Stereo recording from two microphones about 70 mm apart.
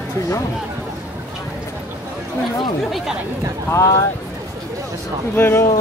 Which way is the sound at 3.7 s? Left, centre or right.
Left.